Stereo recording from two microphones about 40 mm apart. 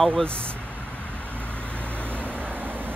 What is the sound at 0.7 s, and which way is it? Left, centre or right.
Vehicle, right.